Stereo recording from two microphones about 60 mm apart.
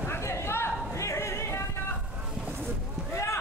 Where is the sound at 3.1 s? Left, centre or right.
Left.